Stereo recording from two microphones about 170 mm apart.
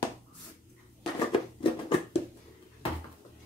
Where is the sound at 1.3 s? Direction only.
30° left (ahead or behind).